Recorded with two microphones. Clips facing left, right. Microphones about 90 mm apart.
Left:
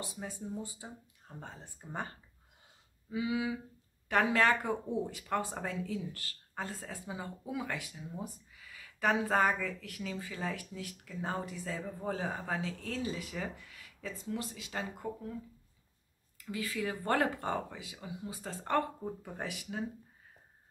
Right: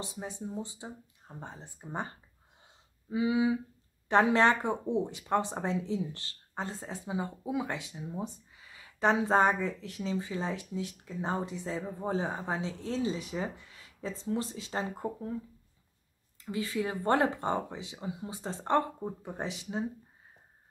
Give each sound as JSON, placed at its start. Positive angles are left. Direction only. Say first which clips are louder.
{"t": 0.0, "sound": "speech", "louder": "right 3 dB", "side_deg": -20}
{"t": 16.3, "sound": "speech", "louder": "right 4 dB", "side_deg": -25}